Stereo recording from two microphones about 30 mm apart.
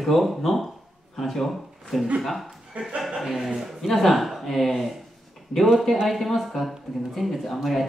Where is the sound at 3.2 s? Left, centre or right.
Centre.